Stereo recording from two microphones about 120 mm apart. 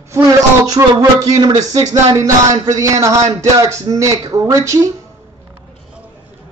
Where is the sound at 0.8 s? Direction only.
30° right (ahead or behind).